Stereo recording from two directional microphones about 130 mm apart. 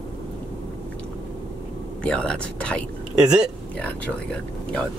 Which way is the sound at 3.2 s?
5° right (ahead or behind).